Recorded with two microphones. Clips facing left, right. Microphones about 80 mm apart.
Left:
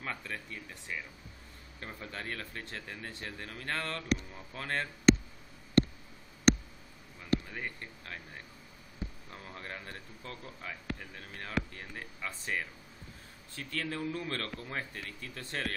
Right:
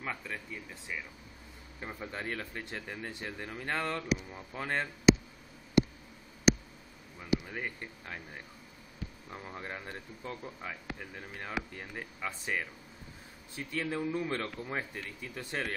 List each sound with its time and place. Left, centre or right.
0.0 s speech: centre
1.8 s speech: centre
5.1 s a sound: centre
6.5 s a sound: centre
7.2 s speech: centre
9.3 s speech: centre